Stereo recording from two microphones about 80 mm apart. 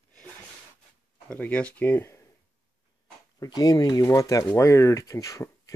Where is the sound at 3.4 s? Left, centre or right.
Left.